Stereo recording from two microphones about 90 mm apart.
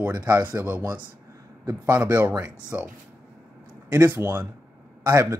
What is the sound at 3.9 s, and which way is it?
Speech, 25° right (ahead or behind).